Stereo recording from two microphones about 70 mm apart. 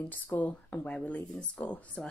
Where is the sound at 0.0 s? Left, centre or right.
Left.